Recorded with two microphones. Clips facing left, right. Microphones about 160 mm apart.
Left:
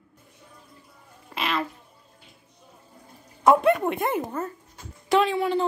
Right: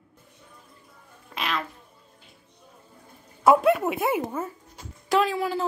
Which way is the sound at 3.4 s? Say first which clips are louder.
Even; 5° right (ahead or behind).